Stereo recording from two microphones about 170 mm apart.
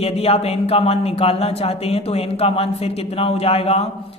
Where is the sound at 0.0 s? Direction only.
35° left (ahead or behind).